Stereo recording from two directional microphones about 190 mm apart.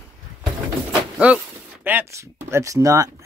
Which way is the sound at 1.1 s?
5° right (ahead or behind).